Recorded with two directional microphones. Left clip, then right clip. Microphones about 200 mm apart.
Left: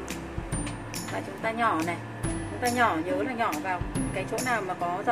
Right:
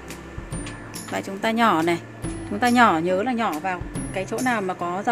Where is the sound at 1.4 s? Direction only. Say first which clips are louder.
Right 7 dB; 60° right (ahead or behind).